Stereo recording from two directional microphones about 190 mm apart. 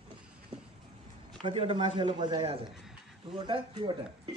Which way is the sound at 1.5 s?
30° right (ahead or behind).